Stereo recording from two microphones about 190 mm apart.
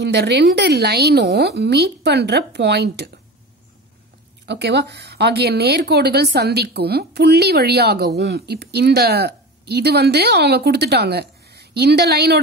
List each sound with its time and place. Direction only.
0.0 s a woman's voice: 60° right (ahead or behind)
4.5 s a woman's voice: 65° right (ahead or behind)